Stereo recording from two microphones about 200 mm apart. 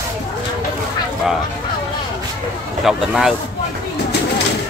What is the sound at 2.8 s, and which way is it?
Speech, centre (ahead or behind).